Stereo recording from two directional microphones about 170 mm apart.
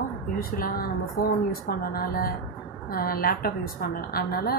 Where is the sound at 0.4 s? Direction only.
60° left (ahead or behind).